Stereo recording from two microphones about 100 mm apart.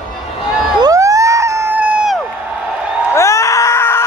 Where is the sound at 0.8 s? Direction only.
35° right (ahead or behind).